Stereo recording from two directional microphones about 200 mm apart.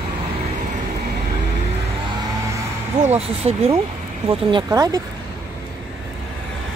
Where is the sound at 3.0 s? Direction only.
30° right (ahead or behind).